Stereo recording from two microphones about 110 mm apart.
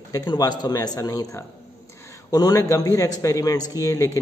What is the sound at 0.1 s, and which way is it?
A man's voice, 35° left (ahead or behind).